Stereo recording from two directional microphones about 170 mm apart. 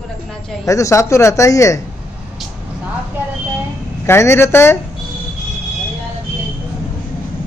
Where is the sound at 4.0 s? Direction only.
15° left (ahead or behind).